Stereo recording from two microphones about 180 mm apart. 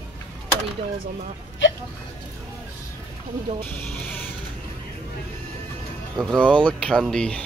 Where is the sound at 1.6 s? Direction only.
90° left.